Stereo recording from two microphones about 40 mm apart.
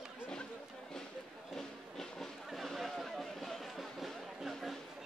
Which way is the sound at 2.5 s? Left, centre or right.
Centre.